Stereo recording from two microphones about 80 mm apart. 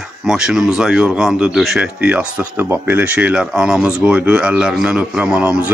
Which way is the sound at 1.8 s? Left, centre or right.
Centre.